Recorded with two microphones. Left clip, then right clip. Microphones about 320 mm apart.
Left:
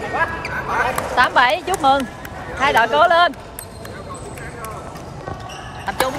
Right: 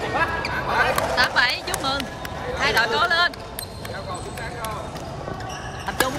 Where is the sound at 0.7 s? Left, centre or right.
Centre.